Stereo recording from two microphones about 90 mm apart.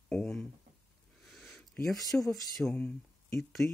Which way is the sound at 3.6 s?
25° left (ahead or behind).